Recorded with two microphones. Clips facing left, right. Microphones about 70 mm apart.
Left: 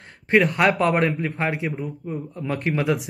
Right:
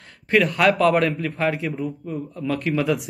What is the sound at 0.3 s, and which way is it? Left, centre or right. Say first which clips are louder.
Speech: left 1 dB; left.